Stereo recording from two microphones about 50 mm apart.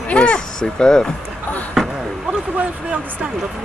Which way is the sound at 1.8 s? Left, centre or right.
Centre.